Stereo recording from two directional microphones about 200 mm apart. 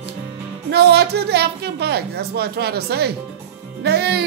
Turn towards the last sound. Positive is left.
turn(degrees=-55)  # may be behind; listen again after turning